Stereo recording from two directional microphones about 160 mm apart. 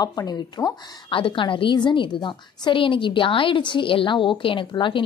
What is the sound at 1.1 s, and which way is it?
A woman's voice, 35° left (ahead or behind).